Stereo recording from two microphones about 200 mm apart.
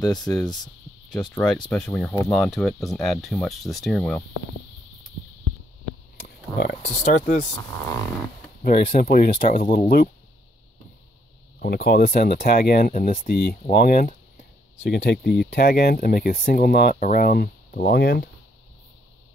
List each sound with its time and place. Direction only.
0.1 s speech: centre (ahead or behind)
2.3 s speech: centre (ahead or behind)
6.2 s a sound: 55° left (ahead or behind)
7.0 s speech: 35° left (ahead or behind)
8.6 s speech: 45° left (ahead or behind)
11.6 s speech: 55° left (ahead or behind)
14.8 s speech: 60° left (ahead or behind)